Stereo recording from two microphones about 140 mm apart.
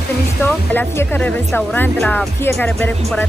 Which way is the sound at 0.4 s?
15° left (ahead or behind).